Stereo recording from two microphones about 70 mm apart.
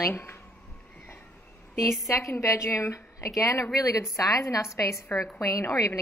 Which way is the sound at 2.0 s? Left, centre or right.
Left.